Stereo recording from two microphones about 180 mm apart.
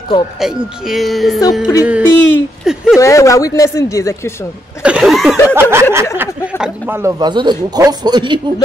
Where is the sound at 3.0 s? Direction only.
15° left (ahead or behind).